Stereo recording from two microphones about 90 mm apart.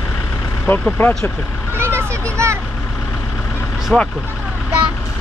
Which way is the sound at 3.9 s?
10° left (ahead or behind).